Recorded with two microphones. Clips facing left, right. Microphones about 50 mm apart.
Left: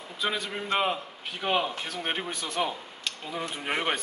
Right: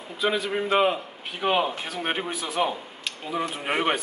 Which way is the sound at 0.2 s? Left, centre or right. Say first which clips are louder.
Right 6 dB; centre.